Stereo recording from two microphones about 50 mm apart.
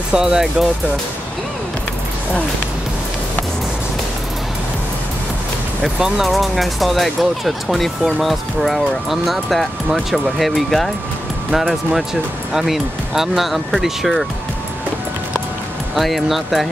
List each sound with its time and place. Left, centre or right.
0.1 s speech: centre
5.9 s speech: centre
15.9 s speech: centre